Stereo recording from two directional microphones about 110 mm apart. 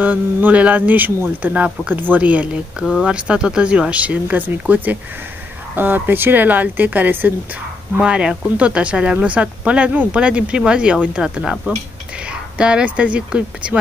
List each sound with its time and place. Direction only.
0.0 s speech: 15° right (ahead or behind)